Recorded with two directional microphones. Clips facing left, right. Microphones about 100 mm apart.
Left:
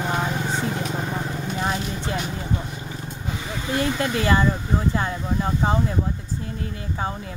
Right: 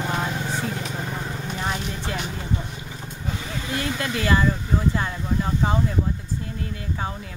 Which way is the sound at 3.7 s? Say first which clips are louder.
Left 4 dB; 30° left (ahead or behind).